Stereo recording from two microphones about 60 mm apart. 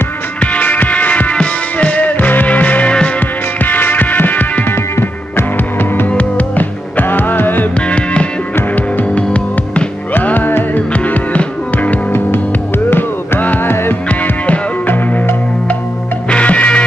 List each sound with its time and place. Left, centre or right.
0.4 s music: left
4.9 s music: left
6.0 s music: left
7.9 s music: left
10.1 s music: left
12.1 s music: left
14.0 s music: left
16.3 s music: left